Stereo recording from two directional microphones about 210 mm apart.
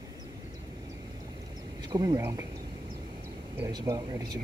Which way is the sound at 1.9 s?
20° right (ahead or behind).